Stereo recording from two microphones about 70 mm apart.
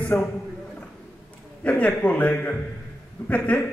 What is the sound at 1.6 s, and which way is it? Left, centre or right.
A man's voice, left.